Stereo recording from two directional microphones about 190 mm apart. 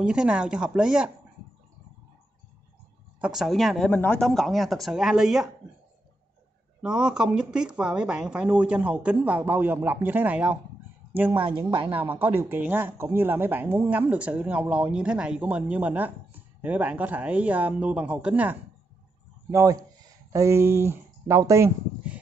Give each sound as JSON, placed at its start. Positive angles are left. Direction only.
{"t": 0.0, "sound": "speech", "side_deg": -5}
{"t": 3.2, "sound": "speech", "side_deg": -5}
{"t": 6.8, "sound": "speech", "side_deg": -5}
{"t": 11.3, "sound": "a woman's voice", "side_deg": -25}
{"t": 12.0, "sound": "speech", "side_deg": -10}